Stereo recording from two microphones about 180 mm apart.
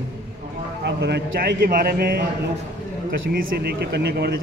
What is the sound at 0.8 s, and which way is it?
Speech, 65° right (ahead or behind).